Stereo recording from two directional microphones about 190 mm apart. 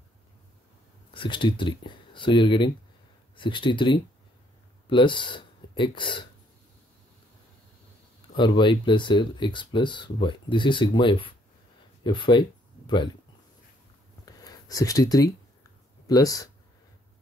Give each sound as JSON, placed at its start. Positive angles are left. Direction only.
{"t": 1.1, "sound": "speech", "side_deg": 25}
{"t": 8.4, "sound": "speech", "side_deg": 25}
{"t": 14.2, "sound": "a sound", "side_deg": 20}
{"t": 16.1, "sound": "speech", "side_deg": 20}